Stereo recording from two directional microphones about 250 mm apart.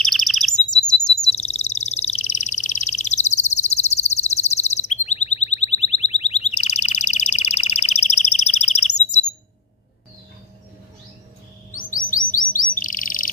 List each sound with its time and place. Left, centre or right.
0.0 s chirp: centre
1.3 s a sound: left
11.7 s bird: left